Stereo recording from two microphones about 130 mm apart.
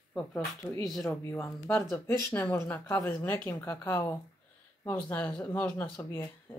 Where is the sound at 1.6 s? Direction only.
5° left (ahead or behind).